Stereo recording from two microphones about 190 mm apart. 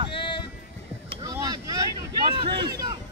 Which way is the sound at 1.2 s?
20° right (ahead or behind).